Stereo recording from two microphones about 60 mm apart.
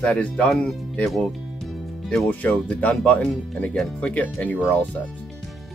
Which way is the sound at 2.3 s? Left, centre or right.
Left.